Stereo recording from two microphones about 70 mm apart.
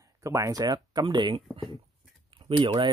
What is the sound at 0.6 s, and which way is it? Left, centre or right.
Speech, right.